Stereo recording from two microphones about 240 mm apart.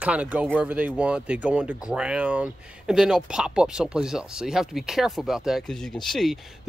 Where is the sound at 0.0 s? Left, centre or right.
Centre.